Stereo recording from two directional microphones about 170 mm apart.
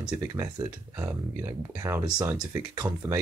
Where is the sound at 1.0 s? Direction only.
20° right (ahead or behind).